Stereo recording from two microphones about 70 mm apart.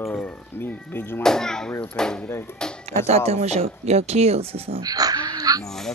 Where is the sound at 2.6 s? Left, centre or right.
Centre.